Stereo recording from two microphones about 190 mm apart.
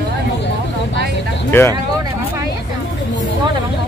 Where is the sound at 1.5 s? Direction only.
10° left (ahead or behind).